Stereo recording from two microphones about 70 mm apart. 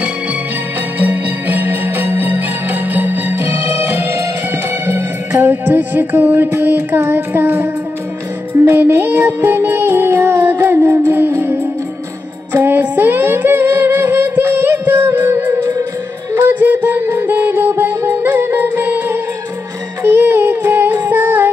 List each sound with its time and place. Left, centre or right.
0.9 s music: right
12.5 s music: right